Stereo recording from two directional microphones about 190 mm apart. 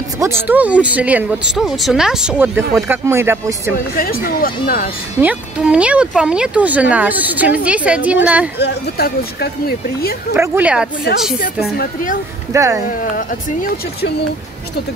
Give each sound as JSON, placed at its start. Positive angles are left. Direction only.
{"t": 0.5, "sound": "speech", "side_deg": -10}
{"t": 3.7, "sound": "speech", "side_deg": 50}
{"t": 5.2, "sound": "speech", "side_deg": -5}
{"t": 8.5, "sound": "speech", "side_deg": 60}
{"t": 10.3, "sound": "speech", "side_deg": -10}
{"t": 11.7, "sound": "speech", "side_deg": 50}
{"t": 12.5, "sound": "speech", "side_deg": -15}
{"t": 13.1, "sound": "speech", "side_deg": 50}